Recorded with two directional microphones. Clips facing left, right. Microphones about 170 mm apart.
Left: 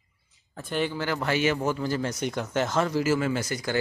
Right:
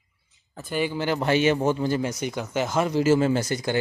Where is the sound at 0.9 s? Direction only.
20° right (ahead or behind).